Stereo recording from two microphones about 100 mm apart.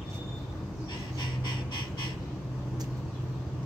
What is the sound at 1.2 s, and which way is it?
Duck, 50° left (ahead or behind).